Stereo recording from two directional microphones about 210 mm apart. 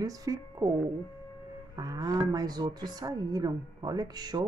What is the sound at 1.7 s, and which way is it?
Speech, 15° right (ahead or behind).